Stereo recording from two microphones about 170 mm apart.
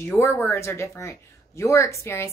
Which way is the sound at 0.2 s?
15° left (ahead or behind).